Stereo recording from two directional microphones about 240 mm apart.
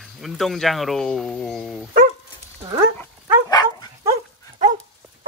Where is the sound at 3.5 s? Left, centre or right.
Centre.